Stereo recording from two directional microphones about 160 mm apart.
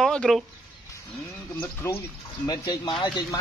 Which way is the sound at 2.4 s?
25° left (ahead or behind).